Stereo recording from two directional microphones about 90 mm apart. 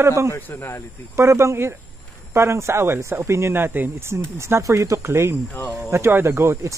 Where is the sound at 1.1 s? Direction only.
30° right (ahead or behind).